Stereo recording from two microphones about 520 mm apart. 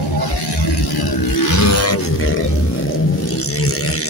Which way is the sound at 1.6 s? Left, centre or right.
Left.